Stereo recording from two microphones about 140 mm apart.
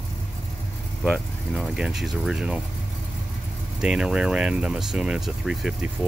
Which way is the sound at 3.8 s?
5° right (ahead or behind).